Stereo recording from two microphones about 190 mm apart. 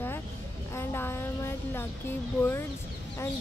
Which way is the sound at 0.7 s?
10° left (ahead or behind).